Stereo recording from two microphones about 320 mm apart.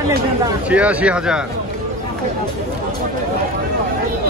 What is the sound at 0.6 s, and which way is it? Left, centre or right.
Speech, centre.